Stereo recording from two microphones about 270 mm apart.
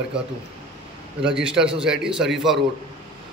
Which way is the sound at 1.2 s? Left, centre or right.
Centre.